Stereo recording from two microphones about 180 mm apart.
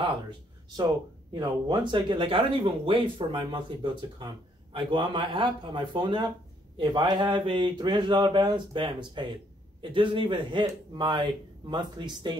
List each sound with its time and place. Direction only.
0.7 s speech: 20° right (ahead or behind)